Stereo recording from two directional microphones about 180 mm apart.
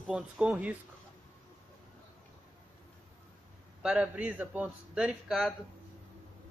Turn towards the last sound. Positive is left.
turn(degrees=0)  # may be behind; listen again after turning